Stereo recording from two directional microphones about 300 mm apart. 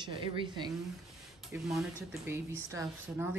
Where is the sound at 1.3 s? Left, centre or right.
Centre.